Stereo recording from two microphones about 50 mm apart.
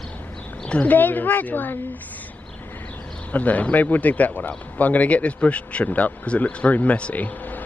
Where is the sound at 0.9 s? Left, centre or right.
Left.